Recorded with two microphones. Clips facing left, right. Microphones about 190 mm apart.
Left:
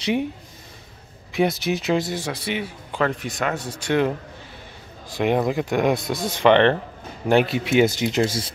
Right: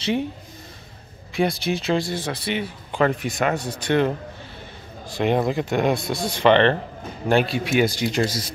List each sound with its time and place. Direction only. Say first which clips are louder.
0.0 s speech: left 1 dB; 15° left (ahead or behind)
1.3 s a man's voice: left 1 dB; 20° left (ahead or behind)
3.0 s a man's voice: right 3 dB; 5° right (ahead or behind)
5.5 s a man's voice: left 1 dB; 10° left (ahead or behind)